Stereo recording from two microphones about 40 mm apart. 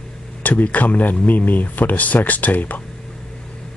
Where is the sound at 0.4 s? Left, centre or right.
Left.